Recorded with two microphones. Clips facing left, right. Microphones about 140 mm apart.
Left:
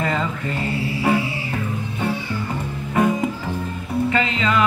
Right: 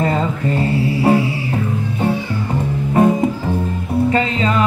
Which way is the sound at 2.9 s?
30° right (ahead or behind).